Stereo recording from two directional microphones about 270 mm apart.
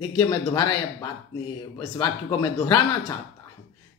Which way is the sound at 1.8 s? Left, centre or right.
Centre.